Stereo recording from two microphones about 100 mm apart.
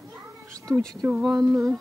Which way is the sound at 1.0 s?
20° right (ahead or behind).